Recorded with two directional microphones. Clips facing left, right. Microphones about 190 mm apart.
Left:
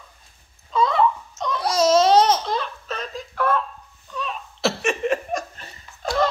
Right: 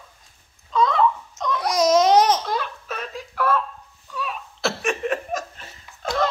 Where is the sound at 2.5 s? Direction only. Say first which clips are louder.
Left 1 dB; 10° right (ahead or behind).